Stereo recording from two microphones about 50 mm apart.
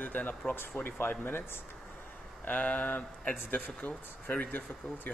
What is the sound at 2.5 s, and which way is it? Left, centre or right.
Speech, left.